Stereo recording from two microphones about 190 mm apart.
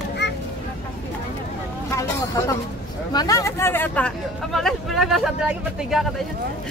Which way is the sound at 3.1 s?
20° left (ahead or behind).